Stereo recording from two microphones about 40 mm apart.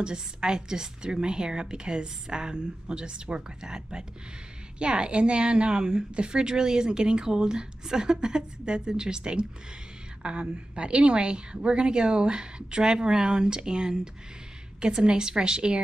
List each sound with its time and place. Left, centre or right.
0.0 s a woman's voice: centre